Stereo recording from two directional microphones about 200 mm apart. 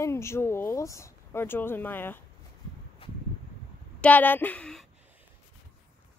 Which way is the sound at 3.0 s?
25° left (ahead or behind).